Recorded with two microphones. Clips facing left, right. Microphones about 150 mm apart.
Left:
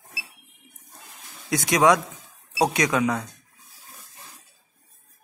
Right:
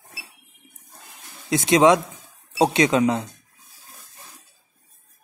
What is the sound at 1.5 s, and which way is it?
A man's voice, 25° right (ahead or behind).